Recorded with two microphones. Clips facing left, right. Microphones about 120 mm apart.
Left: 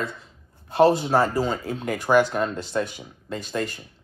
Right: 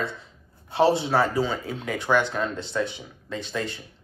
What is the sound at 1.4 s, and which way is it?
Speech, 45° left (ahead or behind).